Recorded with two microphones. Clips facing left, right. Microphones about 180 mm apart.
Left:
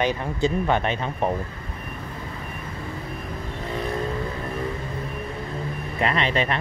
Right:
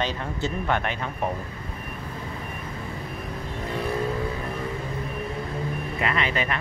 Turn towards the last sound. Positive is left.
turn(degrees=30)  # may be behind; listen again after turning